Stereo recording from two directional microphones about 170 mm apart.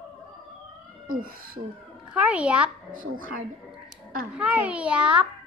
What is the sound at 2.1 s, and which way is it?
Speech, 10° right (ahead or behind).